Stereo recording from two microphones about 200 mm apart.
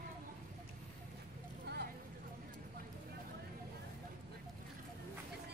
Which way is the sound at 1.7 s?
55° right (ahead or behind).